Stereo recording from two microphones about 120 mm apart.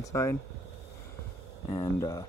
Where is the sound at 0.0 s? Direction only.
25° left (ahead or behind).